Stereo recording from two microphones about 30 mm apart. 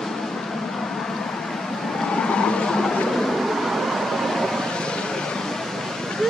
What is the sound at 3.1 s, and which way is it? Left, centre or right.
Vehicle, centre.